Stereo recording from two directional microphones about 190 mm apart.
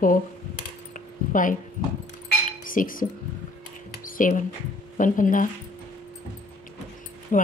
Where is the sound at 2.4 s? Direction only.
45° left (ahead or behind).